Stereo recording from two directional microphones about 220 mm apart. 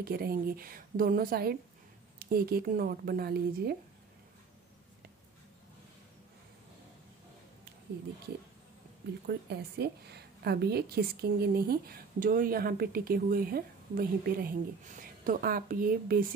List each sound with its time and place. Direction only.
0.0 s a woman's voice: 40° right (ahead or behind)
9.5 s a woman's voice: 45° right (ahead or behind)